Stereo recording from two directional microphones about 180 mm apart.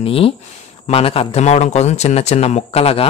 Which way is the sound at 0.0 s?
30° left (ahead or behind).